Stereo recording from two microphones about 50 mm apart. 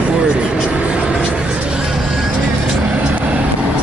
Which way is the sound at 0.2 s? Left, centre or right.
Right.